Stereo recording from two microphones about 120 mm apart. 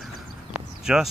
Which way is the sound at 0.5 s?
5° right (ahead or behind).